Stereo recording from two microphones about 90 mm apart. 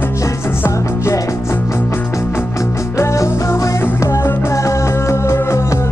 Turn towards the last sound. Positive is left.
turn(degrees=30)  # may be behind; listen again after turning